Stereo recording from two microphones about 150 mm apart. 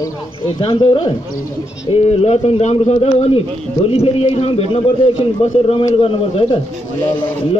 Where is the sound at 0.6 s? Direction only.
35° left (ahead or behind).